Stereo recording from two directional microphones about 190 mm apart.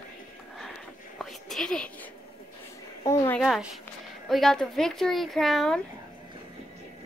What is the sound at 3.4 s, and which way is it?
Speech, centre (ahead or behind).